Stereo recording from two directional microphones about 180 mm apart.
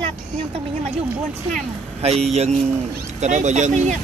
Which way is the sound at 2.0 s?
35° right (ahead or behind).